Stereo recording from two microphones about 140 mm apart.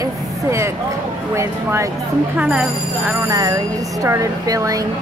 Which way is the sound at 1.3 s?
20° right (ahead or behind).